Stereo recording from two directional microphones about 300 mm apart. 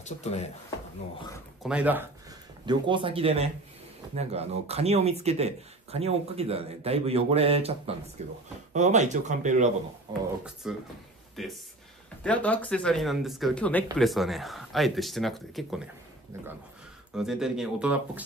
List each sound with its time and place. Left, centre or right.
0.0 s speech: left
1.3 s speech: centre
10.4 s speech: centre
17.1 s speech: centre